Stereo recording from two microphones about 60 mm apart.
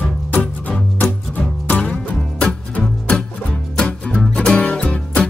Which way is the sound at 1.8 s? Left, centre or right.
Centre.